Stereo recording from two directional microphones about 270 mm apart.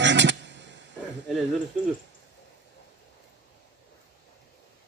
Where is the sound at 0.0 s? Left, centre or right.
Right.